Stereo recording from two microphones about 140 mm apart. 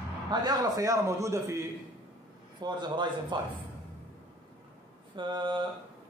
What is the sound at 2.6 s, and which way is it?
A man's voice, 35° right (ahead or behind).